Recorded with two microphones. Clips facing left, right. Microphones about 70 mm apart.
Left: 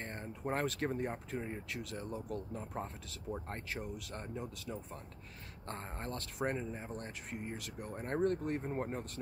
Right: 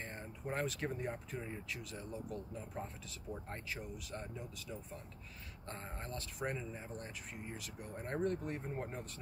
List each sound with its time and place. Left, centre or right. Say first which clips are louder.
0.0 s speech: left 4 dB; left
1.7 s speech: left 4 dB; left